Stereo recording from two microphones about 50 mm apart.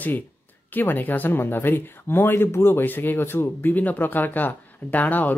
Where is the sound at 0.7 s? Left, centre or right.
Left.